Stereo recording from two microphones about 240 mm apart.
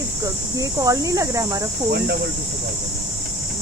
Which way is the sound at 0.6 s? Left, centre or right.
Centre.